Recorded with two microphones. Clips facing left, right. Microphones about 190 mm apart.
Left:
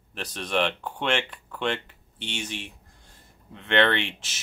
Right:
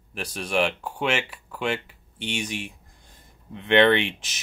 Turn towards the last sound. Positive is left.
turn(degrees=-15)  # may be behind; listen again after turning